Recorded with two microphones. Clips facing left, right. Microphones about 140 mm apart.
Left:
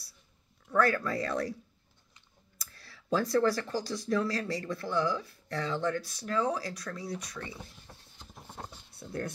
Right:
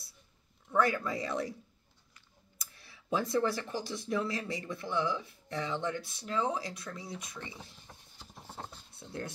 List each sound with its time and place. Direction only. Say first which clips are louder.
0.7 s speech: left 2 dB; 15° right (ahead or behind)
2.6 s speech: left 2 dB; 20° right (ahead or behind)
8.2 s vehicle: even; centre (ahead or behind)